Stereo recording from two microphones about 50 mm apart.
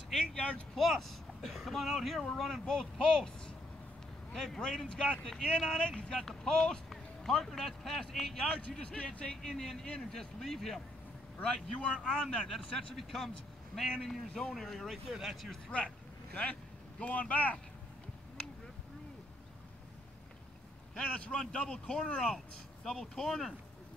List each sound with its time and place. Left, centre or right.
0.1 s speech: centre
0.4 s speech: left
0.7 s a man's voice: centre
8.8 s speech: left
9.4 s speech: centre
11.4 s speech: centre
12.4 s speech: centre
17.0 s speech: left
20.9 s speech: centre